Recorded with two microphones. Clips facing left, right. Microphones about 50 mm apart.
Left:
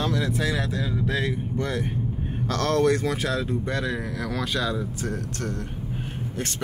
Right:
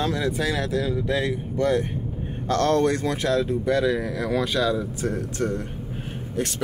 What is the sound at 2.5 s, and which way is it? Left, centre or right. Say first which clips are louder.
Speech: right 3 dB; right.